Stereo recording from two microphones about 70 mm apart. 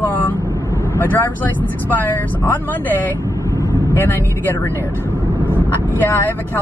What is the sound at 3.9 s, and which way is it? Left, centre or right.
Speech, left.